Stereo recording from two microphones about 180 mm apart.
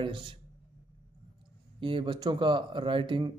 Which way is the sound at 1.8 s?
30° right (ahead or behind).